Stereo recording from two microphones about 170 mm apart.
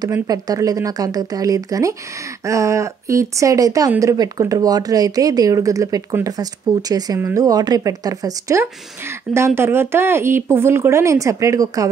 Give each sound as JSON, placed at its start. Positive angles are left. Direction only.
{"t": 0.0, "sound": "speech", "side_deg": -20}